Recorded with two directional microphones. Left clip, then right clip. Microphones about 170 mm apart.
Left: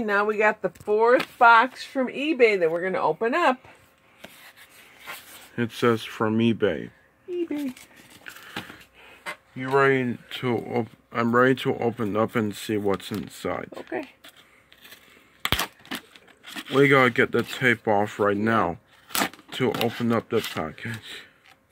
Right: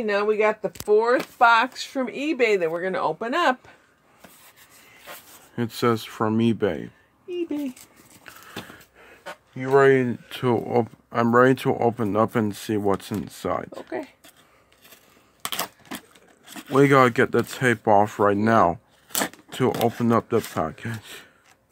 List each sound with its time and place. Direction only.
0.2 s speech: 20° left (ahead or behind)
5.6 s speech: 20° right (ahead or behind)
7.2 s speech: 10° left (ahead or behind)
8.2 s a sound: 30° right (ahead or behind)
9.8 s speech: 50° right (ahead or behind); by 13.7 s 35° right (ahead or behind)
13.7 s speech: 10° left (ahead or behind)
15.4 s a sound: 20° right (ahead or behind)
16.7 s speech: 45° right (ahead or behind)
20.1 s speech: 50° right (ahead or behind)